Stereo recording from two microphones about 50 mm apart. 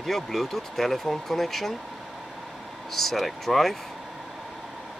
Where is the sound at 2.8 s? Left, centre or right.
Centre.